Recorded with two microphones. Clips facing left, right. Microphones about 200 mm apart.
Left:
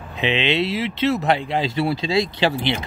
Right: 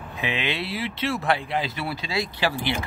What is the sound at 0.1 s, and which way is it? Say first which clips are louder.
Speech: left 7 dB; 20° left (ahead or behind).